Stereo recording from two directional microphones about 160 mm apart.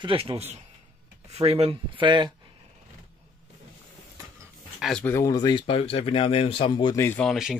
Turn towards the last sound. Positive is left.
turn(degrees=-5)  # may be behind; listen again after turning